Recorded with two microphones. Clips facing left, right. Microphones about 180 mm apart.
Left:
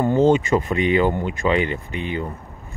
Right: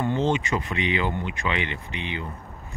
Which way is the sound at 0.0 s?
45° left (ahead or behind).